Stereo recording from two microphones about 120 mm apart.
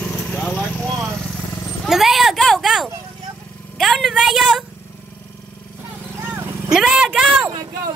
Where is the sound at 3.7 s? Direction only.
Centre (ahead or behind).